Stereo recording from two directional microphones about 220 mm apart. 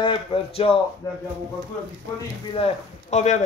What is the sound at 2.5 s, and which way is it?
Speech, 30° left (ahead or behind).